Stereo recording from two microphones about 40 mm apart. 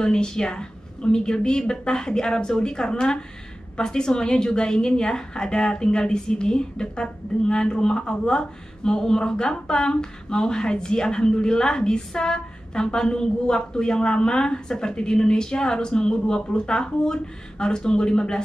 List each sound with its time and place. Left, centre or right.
0.0 s a woman's voice: centre